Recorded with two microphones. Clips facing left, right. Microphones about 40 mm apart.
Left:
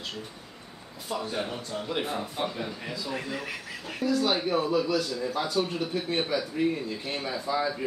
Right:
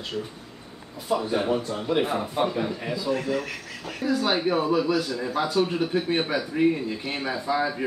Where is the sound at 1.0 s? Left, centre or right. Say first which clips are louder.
Right 7 dB; centre.